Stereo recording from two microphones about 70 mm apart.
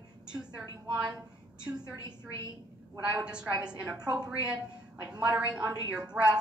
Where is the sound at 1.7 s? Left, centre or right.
Right.